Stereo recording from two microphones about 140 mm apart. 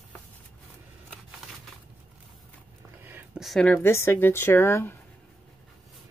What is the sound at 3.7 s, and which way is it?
Speech, 15° left (ahead or behind).